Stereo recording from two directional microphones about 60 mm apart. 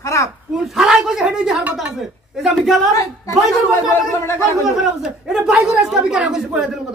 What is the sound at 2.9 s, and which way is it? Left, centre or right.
Speech, left.